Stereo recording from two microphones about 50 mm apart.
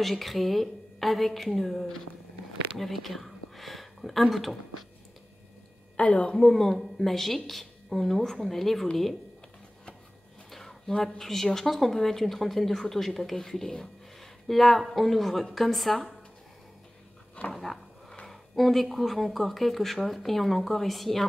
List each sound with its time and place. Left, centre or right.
0.0 s speech: centre
5.9 s a woman's voice: left
6.3 s speech: centre
10.5 s speech: centre
17.4 s a sound: left
18.2 s speech: centre